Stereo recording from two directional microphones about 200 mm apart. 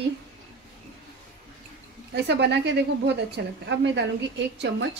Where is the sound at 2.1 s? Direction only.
55° right (ahead or behind).